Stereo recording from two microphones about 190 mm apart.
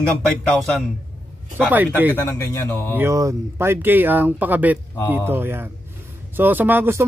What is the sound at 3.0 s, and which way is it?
Speech, 15° right (ahead or behind).